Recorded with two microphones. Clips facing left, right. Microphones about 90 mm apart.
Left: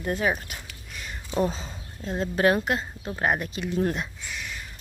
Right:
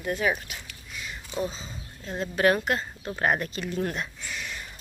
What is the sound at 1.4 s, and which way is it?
Speech, 60° left (ahead or behind).